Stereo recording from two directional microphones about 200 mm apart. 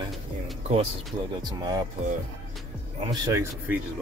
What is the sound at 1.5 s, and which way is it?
Speech, 20° right (ahead or behind).